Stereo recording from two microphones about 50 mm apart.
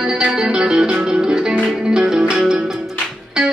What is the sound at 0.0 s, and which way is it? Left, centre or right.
Music, centre.